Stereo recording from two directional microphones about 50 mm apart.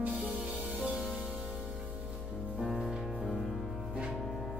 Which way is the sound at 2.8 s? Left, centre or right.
Centre.